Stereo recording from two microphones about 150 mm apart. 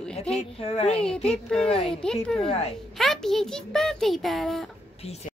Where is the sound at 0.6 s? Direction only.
45° left (ahead or behind).